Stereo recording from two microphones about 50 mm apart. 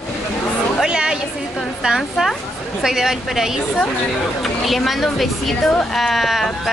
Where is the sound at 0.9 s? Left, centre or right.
Centre.